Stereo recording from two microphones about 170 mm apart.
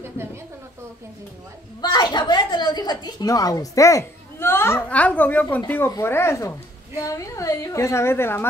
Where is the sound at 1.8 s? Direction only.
25° left (ahead or behind).